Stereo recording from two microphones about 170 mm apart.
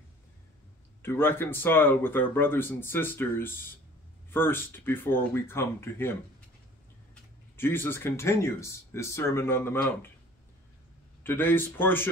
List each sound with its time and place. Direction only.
1.0 s speech: 15° left (ahead or behind)
7.5 s speech: 15° left (ahead or behind)
11.2 s speech: 10° left (ahead or behind)